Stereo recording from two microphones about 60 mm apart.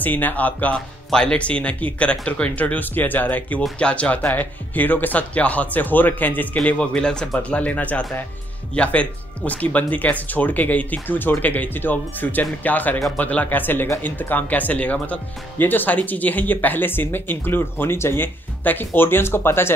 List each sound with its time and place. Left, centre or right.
0.0 s speech: left
0.7 s speech: centre; by 19.7 s left